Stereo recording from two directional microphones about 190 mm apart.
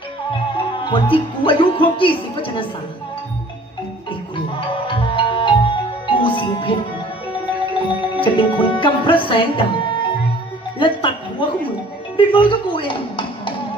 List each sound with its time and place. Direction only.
0.3 s music: 25° left (ahead or behind)
4.6 s music: 25° left (ahead or behind)
7.9 s music: 25° left (ahead or behind)
10.8 s speech: 25° left (ahead or behind)